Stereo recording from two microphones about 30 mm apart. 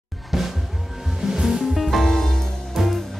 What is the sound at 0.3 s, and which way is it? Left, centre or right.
Music, centre.